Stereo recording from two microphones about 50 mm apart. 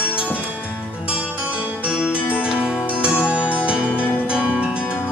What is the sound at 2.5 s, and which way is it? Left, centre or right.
Music, centre.